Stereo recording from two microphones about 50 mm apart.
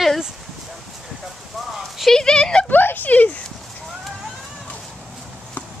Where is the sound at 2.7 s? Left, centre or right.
Left.